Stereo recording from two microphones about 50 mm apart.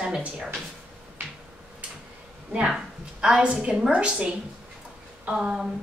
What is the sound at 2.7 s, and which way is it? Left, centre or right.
A woman's voice, centre.